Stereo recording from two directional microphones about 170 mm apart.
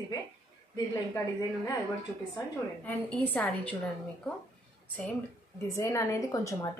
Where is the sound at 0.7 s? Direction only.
20° left (ahead or behind).